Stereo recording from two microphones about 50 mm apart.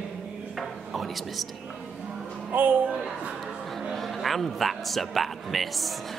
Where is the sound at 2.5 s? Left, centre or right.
Right.